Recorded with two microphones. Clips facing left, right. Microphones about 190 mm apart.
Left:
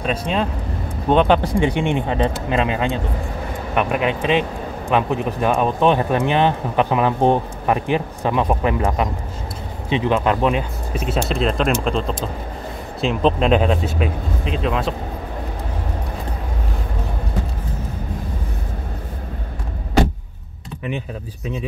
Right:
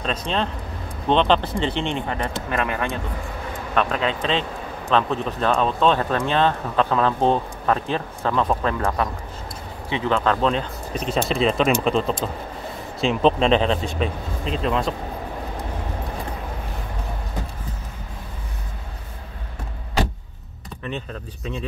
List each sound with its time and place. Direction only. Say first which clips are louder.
0.0 s a man's voice: left 3 dB; 10° left (ahead or behind)